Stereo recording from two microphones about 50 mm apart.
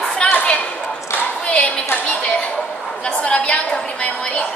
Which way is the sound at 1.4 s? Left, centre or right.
Left.